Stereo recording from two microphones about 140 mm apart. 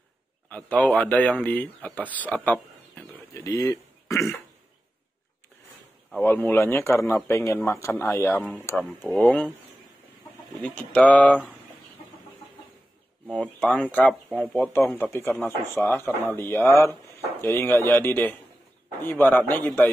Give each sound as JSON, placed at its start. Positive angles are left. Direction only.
{"t": 0.5, "sound": "a man's voice", "side_deg": 10}
{"t": 3.3, "sound": "speech", "side_deg": 25}
{"t": 6.1, "sound": "a man's voice", "side_deg": 10}
{"t": 10.5, "sound": "a man's voice", "side_deg": 5}
{"t": 13.3, "sound": "a man's voice", "side_deg": 5}